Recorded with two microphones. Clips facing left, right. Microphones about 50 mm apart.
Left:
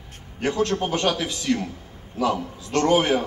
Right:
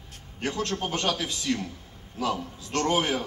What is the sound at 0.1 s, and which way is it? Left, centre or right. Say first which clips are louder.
A man's voice: left 6 dB; left.